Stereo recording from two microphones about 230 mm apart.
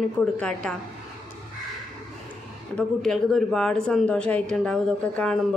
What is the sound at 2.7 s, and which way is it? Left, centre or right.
Speech, centre.